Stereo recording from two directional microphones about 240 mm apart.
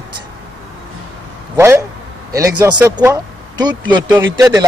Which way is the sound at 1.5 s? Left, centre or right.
Centre.